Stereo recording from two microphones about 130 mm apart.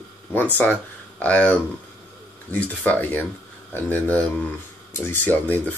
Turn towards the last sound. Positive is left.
turn(degrees=15)  # may be behind; listen again after turning